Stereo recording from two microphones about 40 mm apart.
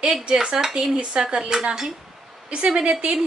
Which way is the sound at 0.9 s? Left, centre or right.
Right.